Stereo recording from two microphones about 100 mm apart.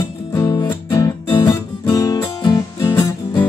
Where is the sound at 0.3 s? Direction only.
40° left (ahead or behind).